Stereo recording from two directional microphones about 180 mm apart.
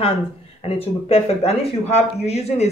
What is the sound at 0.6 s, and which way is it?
Speech, 35° left (ahead or behind).